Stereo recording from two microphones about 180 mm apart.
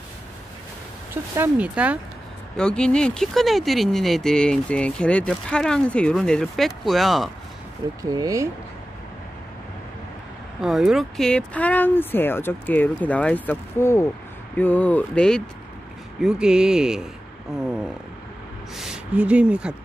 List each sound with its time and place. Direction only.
1.3 s speech: 10° right (ahead or behind)
2.5 s speech: 5° left (ahead or behind)
8.0 s speech: 20° right (ahead or behind)
10.6 s speech: centre (ahead or behind)
18.8 s speech: 5° right (ahead or behind)